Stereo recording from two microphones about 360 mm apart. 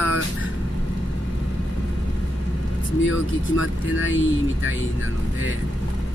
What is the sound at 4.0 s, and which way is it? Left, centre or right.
Speech, left.